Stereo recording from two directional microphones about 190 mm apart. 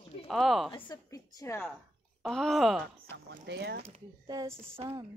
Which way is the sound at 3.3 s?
60° right (ahead or behind).